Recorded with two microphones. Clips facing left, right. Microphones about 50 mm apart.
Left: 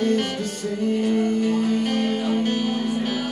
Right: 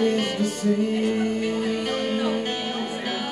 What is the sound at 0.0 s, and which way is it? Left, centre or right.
Music, centre.